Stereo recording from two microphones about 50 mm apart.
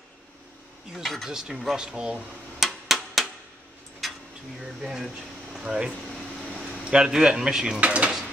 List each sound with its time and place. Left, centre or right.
0.9 s speech: centre
1.3 s speech: centre
2.6 s a sound: centre
4.6 s speech: centre
7.8 s speech: right